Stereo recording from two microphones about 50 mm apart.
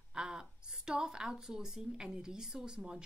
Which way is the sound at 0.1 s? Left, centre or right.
Centre.